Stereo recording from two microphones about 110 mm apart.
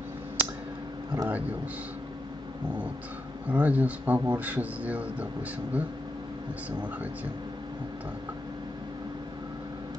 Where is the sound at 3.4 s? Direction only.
15° right (ahead or behind).